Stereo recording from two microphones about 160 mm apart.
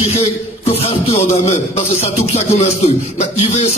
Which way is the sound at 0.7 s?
40° left (ahead or behind).